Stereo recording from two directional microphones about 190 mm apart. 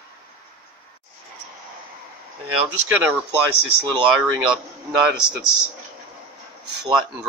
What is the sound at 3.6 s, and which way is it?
Speech, 5° right (ahead or behind).